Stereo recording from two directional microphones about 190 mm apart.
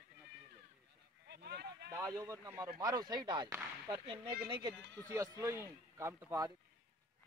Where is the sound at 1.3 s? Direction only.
60° right (ahead or behind).